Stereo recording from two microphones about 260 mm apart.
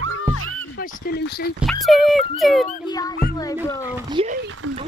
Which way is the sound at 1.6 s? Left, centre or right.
Centre.